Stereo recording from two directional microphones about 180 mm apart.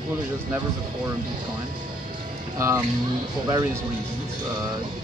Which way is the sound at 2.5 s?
15° right (ahead or behind).